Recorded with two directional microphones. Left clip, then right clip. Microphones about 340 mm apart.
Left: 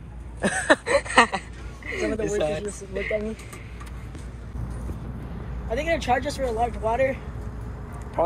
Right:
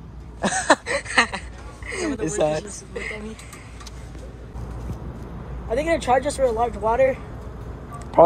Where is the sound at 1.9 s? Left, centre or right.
Right.